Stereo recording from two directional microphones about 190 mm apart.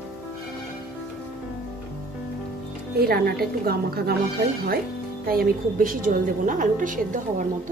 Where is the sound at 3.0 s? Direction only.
55° right (ahead or behind).